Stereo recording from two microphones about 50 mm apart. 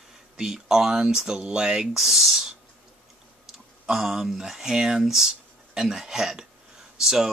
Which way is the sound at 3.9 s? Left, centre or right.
Centre.